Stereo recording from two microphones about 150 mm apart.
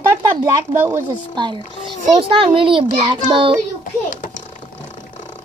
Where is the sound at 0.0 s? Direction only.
20° right (ahead or behind).